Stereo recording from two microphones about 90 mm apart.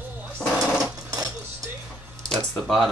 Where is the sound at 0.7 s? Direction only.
40° right (ahead or behind).